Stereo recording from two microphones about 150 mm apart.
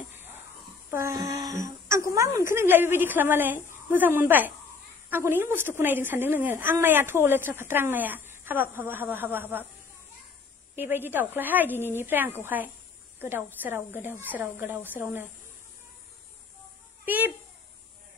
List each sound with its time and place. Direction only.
0.8 s a sound: 20° right (ahead or behind)
1.9 s a woman's voice: 20° right (ahead or behind)
10.8 s a woman's voice: 15° right (ahead or behind)
17.0 s a child's voice: 10° right (ahead or behind)